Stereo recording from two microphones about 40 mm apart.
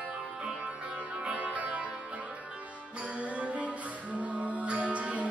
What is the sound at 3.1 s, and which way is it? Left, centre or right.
Music, right.